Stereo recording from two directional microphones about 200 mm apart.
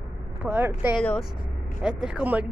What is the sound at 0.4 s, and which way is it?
Speech, 10° right (ahead or behind).